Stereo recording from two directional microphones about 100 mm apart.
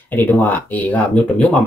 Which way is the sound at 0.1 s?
20° left (ahead or behind).